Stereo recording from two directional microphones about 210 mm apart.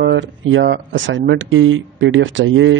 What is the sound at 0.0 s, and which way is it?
Speech, 60° right (ahead or behind).